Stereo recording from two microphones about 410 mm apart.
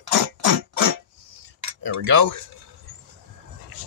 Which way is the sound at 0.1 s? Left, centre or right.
Right.